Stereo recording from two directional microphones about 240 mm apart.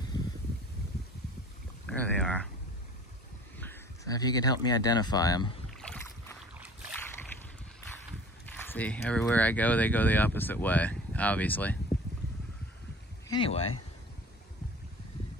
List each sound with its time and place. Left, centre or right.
0.1 s a sound: centre
1.9 s speech: centre
3.5 s speech: centre
5.7 s boat: centre
6.5 s boat: centre
8.5 s speech: centre
13.3 s speech: left